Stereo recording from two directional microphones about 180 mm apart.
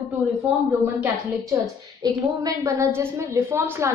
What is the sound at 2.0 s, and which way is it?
A woman's voice, 15° right (ahead or behind).